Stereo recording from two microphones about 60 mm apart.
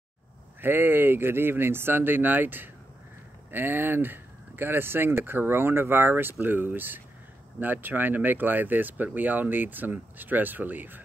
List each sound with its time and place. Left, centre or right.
0.6 s speech: right